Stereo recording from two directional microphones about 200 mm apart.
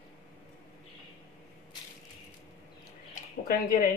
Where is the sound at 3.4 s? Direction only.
40° left (ahead or behind).